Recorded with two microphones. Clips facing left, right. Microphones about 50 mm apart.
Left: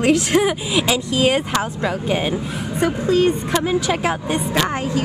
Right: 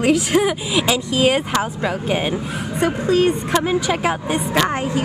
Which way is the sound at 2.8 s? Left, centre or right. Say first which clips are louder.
Even; right.